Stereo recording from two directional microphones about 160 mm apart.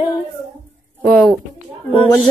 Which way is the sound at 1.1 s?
5° left (ahead or behind).